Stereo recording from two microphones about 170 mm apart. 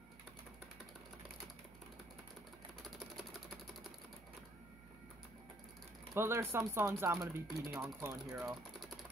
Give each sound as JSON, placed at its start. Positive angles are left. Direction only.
{"t": 6.1, "sound": "speech", "side_deg": -15}